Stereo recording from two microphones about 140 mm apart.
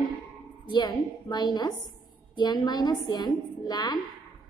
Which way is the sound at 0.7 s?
30° left (ahead or behind).